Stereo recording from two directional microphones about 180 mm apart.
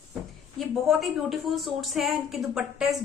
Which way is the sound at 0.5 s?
Centre (ahead or behind).